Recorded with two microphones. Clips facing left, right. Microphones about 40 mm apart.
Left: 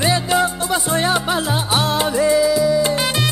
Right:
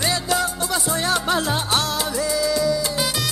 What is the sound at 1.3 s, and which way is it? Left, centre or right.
Music, centre.